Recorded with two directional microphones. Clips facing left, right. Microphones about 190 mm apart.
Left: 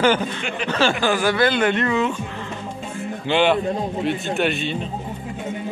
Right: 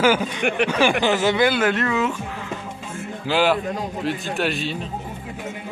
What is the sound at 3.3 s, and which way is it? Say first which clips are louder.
Speech: left 2 dB; 5° right (ahead or behind).